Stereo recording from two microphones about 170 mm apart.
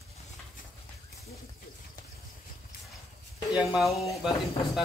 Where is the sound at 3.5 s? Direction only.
Centre (ahead or behind).